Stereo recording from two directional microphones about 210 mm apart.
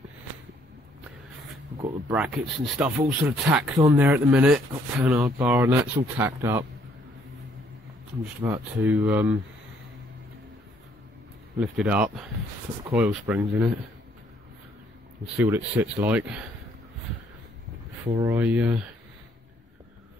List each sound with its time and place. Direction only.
1.8 s speech: 20° right (ahead or behind)
2.1 s speech: 5° right (ahead or behind)
8.4 s speech: 15° right (ahead or behind)
11.6 s speech: 5° right (ahead or behind)
15.3 s speech: 10° right (ahead or behind)
18.2 s speech: 10° right (ahead or behind)